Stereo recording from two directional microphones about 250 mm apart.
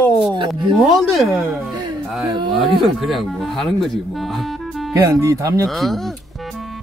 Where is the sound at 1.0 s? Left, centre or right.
Centre.